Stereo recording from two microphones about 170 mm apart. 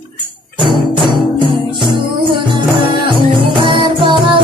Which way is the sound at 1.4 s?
30° right (ahead or behind).